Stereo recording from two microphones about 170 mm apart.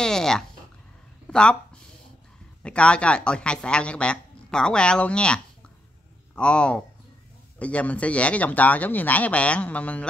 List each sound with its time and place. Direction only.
0.0 s a sound: 5° left (ahead or behind)
1.2 s speech: 5° left (ahead or behind)
2.6 s speech: 5° left (ahead or behind)